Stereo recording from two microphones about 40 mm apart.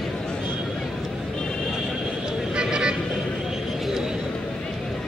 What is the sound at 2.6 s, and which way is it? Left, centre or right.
Vehicle, right.